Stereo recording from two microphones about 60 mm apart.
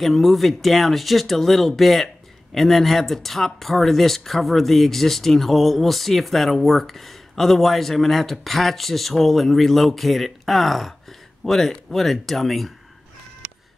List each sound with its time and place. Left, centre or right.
0.0 s speech: centre